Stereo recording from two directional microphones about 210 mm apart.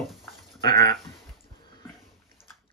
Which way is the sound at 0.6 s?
20° left (ahead or behind).